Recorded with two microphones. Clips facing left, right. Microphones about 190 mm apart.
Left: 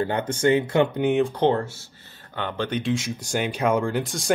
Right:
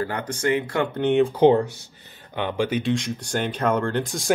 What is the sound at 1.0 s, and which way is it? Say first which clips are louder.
Speech: right 2 dB; centre (ahead or behind).